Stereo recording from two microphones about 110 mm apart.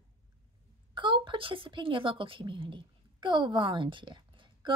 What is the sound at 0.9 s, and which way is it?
A woman's voice, 45° right (ahead or behind).